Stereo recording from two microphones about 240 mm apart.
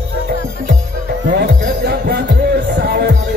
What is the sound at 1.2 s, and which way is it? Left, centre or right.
Music, right.